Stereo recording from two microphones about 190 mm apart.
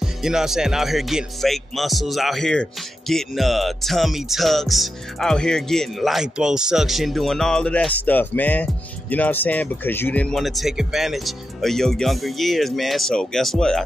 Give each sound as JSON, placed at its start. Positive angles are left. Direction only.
{"t": 0.0, "sound": "speech", "side_deg": -5}